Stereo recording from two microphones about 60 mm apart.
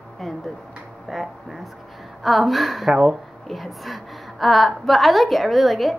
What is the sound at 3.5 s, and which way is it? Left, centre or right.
A woman's voice, centre.